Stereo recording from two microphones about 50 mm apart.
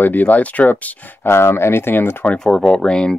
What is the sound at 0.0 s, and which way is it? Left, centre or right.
Speech, left.